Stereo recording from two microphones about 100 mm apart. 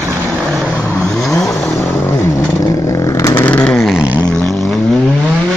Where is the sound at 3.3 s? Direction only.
15° left (ahead or behind).